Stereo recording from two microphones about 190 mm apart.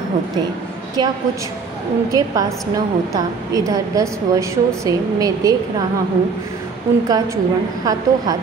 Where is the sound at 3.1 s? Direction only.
15° right (ahead or behind).